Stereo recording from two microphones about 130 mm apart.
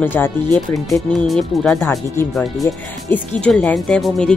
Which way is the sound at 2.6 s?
15° left (ahead or behind).